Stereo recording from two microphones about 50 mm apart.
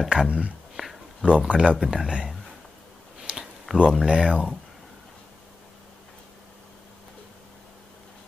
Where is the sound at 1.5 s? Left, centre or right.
Right.